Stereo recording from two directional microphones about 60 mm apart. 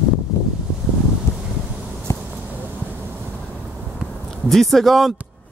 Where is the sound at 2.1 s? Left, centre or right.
Left.